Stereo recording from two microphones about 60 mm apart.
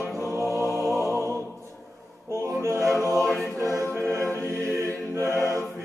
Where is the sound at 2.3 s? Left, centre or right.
Right.